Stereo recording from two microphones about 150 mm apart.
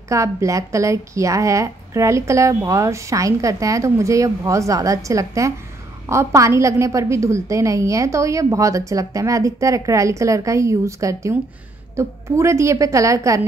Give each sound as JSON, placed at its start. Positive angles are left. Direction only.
{"t": 0.1, "sound": "a woman's voice", "side_deg": -20}